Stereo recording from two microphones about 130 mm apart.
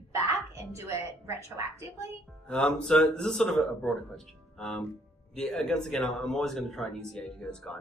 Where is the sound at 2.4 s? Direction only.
10° left (ahead or behind).